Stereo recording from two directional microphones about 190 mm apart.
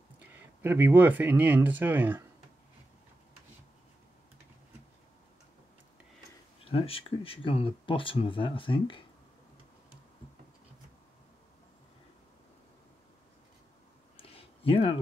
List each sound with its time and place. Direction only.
0.6 s speech: 10° right (ahead or behind)
6.6 s speech: 30° left (ahead or behind)
14.1 s a sound: 30° left (ahead or behind)